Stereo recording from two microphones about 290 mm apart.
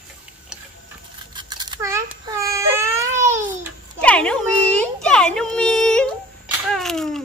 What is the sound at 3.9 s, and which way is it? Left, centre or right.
A child's voice, centre.